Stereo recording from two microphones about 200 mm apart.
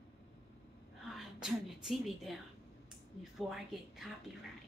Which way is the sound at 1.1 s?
Centre (ahead or behind).